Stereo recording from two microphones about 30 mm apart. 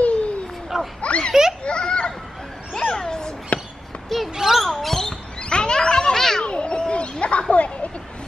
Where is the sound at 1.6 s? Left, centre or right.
Left.